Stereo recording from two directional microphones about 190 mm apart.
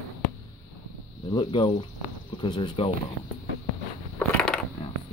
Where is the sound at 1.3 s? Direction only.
25° left (ahead or behind).